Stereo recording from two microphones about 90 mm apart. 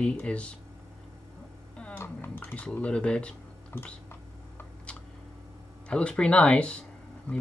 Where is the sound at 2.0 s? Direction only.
25° left (ahead or behind).